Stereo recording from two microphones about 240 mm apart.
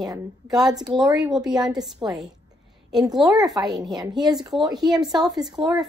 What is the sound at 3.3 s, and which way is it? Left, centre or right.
A woman's voice, centre.